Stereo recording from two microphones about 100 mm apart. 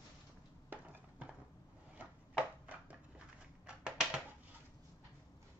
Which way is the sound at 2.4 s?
15° right (ahead or behind).